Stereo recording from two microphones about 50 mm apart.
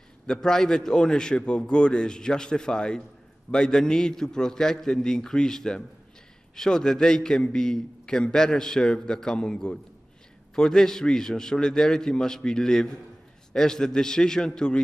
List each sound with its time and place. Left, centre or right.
0.3 s a man's voice: centre